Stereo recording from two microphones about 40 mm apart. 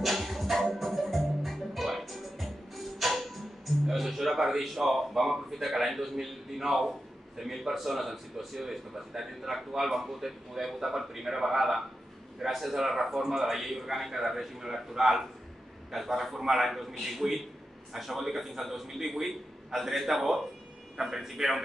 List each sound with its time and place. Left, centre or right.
0.0 s music: centre
3.8 s a man's voice: centre
17.2 s a man's voice: centre
17.9 s a man's voice: centre